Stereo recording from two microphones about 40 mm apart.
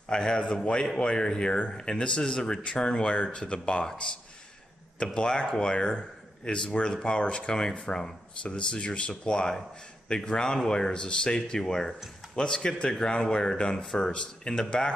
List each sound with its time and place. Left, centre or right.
0.1 s speech: centre; by 3.8 s left
3.8 s speech: centre